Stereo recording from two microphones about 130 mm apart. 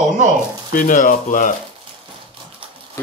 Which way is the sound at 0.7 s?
85° left.